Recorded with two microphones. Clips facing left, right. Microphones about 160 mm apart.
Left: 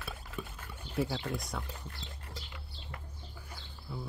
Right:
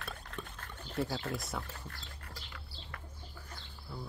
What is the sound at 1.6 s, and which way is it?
Music, 15° left (ahead or behind).